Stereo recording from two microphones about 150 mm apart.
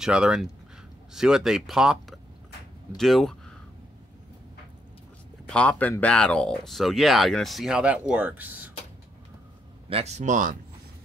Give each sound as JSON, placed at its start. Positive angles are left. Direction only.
{"t": 0.0, "sound": "speech", "side_deg": -5}
{"t": 5.5, "sound": "speech", "side_deg": 10}
{"t": 9.8, "sound": "speech", "side_deg": -45}